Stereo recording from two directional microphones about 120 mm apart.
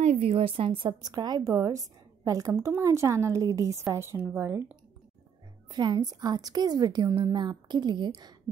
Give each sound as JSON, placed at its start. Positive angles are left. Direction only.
{"t": 0.0, "sound": "a woman's voice", "side_deg": -60}
{"t": 1.0, "sound": "a woman's voice", "side_deg": -35}
{"t": 5.7, "sound": "a woman's voice", "side_deg": -35}
{"t": 7.3, "sound": "a woman's voice", "side_deg": -40}